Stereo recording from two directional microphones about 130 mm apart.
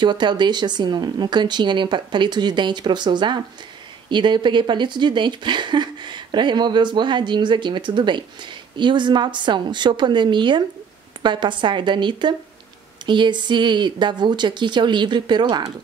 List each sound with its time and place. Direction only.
0.0 s speech: 35° right (ahead or behind)